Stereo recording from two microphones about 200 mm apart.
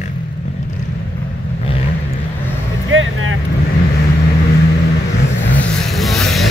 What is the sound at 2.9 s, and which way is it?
Vehicle, 85° right.